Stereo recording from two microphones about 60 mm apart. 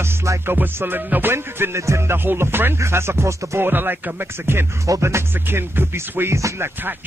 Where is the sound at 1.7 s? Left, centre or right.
Right.